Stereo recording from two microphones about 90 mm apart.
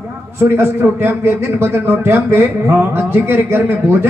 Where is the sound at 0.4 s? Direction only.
30° right (ahead or behind).